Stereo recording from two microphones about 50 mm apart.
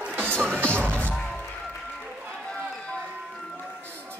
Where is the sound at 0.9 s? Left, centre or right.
Left.